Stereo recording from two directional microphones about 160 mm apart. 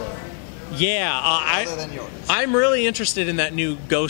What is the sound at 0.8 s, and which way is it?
A man's voice, 5° left (ahead or behind).